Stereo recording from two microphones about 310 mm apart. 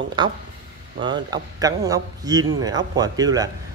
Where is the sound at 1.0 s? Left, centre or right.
Centre.